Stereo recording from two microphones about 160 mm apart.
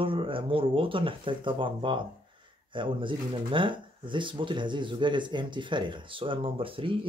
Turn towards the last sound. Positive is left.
turn(degrees=-35)  # may be behind; listen again after turning